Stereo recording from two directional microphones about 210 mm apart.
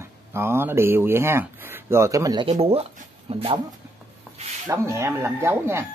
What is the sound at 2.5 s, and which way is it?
Speech, 30° right (ahead or behind).